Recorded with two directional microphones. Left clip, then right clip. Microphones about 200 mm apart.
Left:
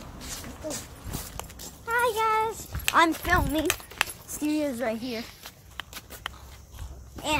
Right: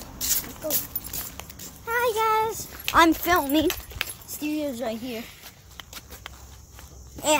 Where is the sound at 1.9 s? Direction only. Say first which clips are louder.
Right 1 dB; 15° right (ahead or behind).